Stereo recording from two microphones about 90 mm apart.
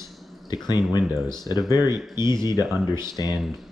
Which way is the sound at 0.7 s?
50° left (ahead or behind).